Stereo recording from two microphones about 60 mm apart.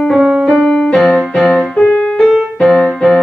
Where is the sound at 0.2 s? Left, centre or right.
Centre.